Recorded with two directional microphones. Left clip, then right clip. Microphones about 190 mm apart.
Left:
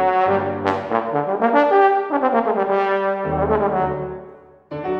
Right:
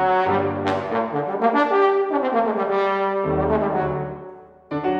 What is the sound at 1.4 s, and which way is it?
Brass instrument, 45° left (ahead or behind).